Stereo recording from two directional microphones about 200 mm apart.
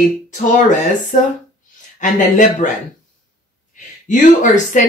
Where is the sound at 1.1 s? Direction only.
40° left (ahead or behind).